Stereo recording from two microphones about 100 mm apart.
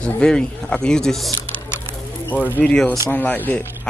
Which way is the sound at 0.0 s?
10° left (ahead or behind).